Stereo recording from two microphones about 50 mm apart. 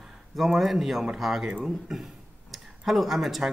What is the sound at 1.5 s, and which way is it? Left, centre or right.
Speech, centre.